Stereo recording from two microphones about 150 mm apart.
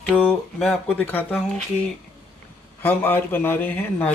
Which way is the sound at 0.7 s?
10° left (ahead or behind).